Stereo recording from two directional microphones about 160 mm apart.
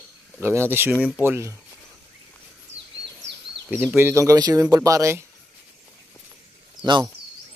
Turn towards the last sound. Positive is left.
turn(degrees=-30)  # may be behind; listen again after turning